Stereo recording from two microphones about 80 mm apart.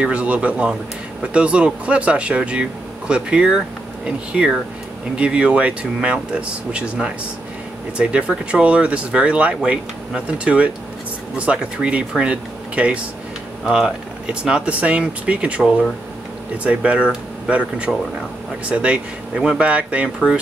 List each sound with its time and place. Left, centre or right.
0.0 s speech: centre
19.3 s speech: centre
19.6 s speech: centre